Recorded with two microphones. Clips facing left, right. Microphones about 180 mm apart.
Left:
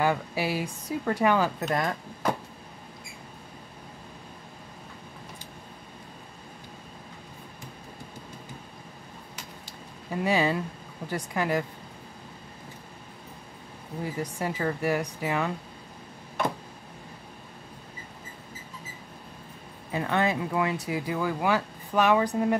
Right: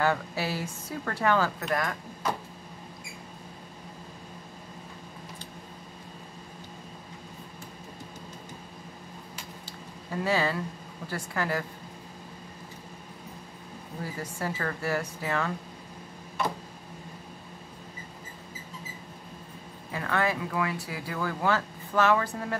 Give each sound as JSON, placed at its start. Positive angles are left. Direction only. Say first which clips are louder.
{"t": 0.0, "sound": "speech", "louder": "left 1 dB", "side_deg": 15}
{"t": 9.7, "sound": "a sound", "louder": "left 2 dB", "side_deg": 15}
{"t": 11.1, "sound": "speech", "louder": "left 3 dB", "side_deg": 15}
{"t": 14.2, "sound": "speech", "louder": "left 3 dB", "side_deg": 15}
{"t": 19.9, "sound": "speech", "louder": "left 2 dB", "side_deg": 20}